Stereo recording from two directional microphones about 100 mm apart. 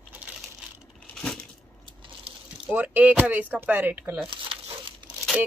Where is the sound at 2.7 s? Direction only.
15° right (ahead or behind).